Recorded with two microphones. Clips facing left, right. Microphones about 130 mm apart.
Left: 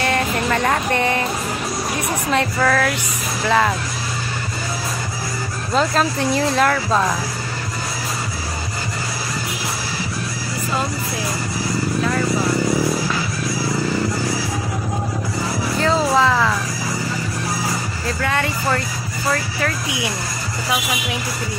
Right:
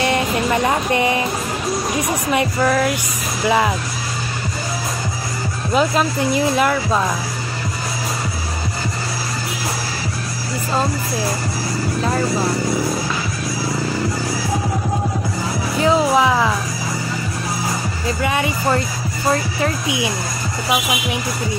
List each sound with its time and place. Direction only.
0.0 s speech: 15° right (ahead or behind)
2.3 s speech: 15° right (ahead or behind)
5.7 s speech: 5° right (ahead or behind)
12.0 s speech: 30° right (ahead or behind)
15.8 s speech: 15° right (ahead or behind)
18.0 s speech: 15° right (ahead or behind)